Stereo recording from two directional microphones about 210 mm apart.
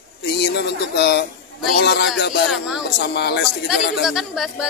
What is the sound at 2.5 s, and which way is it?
Speech, 5° right (ahead or behind).